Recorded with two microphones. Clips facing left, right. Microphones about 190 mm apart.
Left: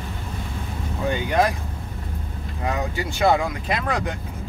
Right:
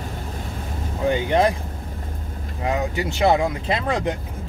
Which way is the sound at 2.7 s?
20° right (ahead or behind).